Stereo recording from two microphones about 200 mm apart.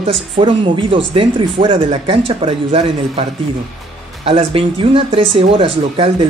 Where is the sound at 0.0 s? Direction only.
25° right (ahead or behind).